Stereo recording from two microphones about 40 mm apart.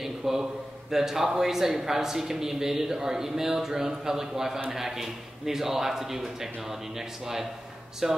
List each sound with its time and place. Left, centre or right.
0.0 s a man's voice: centre